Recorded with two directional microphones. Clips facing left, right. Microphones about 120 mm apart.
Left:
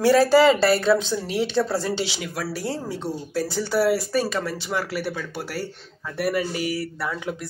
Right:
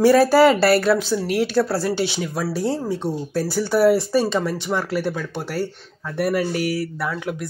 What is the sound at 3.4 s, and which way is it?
Speech, 10° right (ahead or behind).